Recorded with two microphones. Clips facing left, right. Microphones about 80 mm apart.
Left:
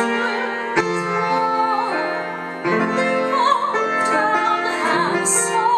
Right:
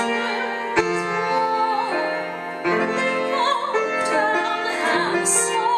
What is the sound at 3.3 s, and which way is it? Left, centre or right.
Music, centre.